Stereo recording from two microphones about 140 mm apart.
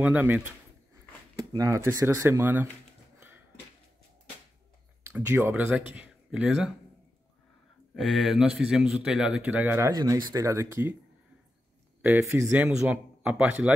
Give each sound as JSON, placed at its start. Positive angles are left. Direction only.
{"t": 0.0, "sound": "speech", "side_deg": -15}
{"t": 1.6, "sound": "speech", "side_deg": -25}
{"t": 3.2, "sound": "a sound", "side_deg": -15}
{"t": 5.0, "sound": "speech", "side_deg": -15}
{"t": 7.9, "sound": "speech", "side_deg": 0}
{"t": 12.0, "sound": "speech", "side_deg": -15}
{"t": 12.6, "sound": "speech", "side_deg": -5}